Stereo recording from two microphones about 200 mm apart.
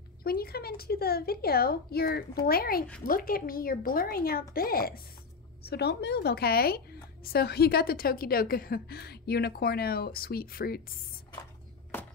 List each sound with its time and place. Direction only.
0.2 s a woman's voice: 50° left (ahead or behind)